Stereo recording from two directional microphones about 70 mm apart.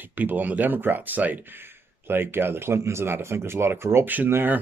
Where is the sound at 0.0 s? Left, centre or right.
Right.